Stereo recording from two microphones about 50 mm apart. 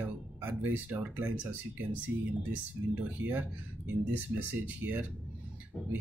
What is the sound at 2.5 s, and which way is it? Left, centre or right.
Speech, right.